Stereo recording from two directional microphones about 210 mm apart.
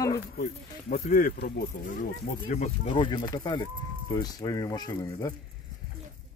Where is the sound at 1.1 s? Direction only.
45° left (ahead or behind).